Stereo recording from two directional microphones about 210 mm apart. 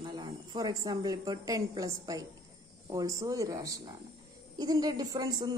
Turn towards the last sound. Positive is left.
turn(degrees=-20)  # may be behind; listen again after turning